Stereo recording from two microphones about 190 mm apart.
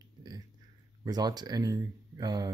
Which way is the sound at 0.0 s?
20° right (ahead or behind).